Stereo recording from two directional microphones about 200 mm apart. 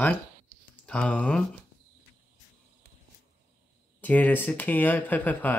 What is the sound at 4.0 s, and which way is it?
Speech, 10° left (ahead or behind).